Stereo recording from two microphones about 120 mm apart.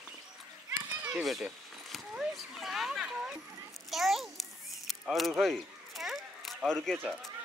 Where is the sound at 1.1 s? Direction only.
Centre (ahead or behind).